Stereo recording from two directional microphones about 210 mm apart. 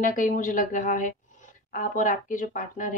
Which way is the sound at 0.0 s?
40° left (ahead or behind).